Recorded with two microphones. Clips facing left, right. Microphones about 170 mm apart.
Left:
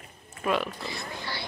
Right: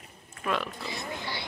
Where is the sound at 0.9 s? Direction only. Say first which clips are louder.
Right 1 dB; 20° right (ahead or behind).